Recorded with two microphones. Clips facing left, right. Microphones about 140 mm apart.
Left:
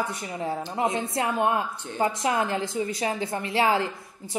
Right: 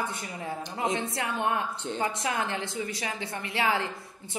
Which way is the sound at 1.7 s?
20° right (ahead or behind).